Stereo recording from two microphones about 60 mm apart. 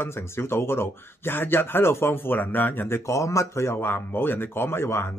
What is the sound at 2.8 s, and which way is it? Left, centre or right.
Speech, left.